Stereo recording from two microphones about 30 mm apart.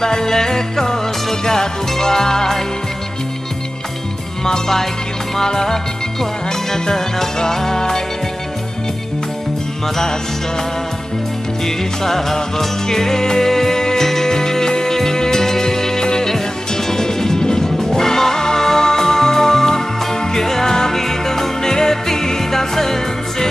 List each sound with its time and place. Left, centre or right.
0.0 s music: centre
4.5 s music: centre
11.6 s music: centre